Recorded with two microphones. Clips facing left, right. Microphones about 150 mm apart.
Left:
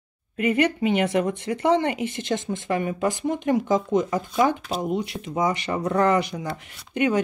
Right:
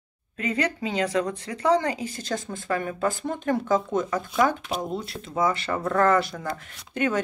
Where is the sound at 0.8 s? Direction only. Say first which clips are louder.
Left 4 dB; 25° left (ahead or behind).